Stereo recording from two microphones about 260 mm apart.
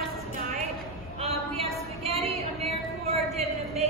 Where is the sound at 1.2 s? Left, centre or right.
Right.